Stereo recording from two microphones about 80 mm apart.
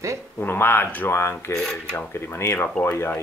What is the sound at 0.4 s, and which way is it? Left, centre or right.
Speech, left.